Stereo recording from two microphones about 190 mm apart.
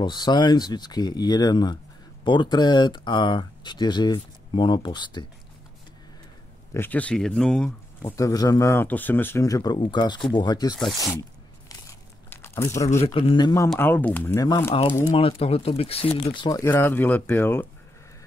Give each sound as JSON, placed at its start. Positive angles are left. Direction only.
{"t": 0.0, "sound": "speech", "side_deg": 20}
{"t": 6.7, "sound": "speech", "side_deg": 10}
{"t": 8.2, "sound": "speech", "side_deg": 20}
{"t": 12.3, "sound": "crumpling", "side_deg": 15}
{"t": 12.7, "sound": "speech", "side_deg": 35}
{"t": 13.7, "sound": "speech", "side_deg": 10}
{"t": 15.1, "sound": "speech", "side_deg": 30}